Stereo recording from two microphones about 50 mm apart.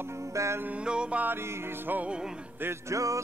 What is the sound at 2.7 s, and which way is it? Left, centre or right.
Music, right.